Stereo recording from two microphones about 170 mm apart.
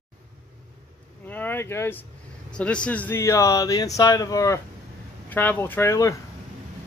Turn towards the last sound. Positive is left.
turn(degrees=20)  # may be behind; listen again after turning